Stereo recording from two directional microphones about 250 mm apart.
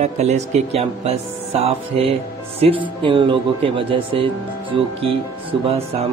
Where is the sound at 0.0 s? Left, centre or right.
Right.